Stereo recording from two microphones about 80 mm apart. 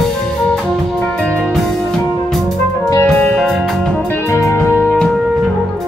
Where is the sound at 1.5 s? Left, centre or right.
Centre.